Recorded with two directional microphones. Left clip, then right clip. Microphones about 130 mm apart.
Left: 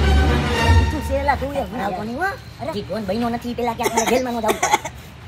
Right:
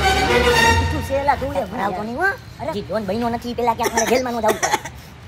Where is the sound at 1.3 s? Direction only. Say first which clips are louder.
Right 1 dB; 15° right (ahead or behind).